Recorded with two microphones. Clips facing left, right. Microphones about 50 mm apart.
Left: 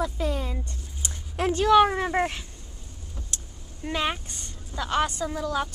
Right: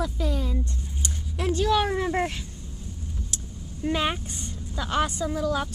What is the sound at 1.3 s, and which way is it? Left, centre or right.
Speech, left.